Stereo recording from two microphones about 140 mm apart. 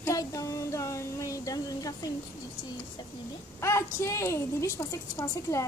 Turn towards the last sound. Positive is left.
turn(degrees=20)  # may be behind; listen again after turning